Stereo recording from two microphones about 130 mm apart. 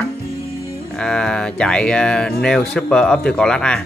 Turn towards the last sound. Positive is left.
turn(degrees=5)  # may be behind; listen again after turning